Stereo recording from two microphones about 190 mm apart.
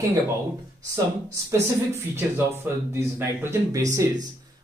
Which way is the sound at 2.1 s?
10° right (ahead or behind).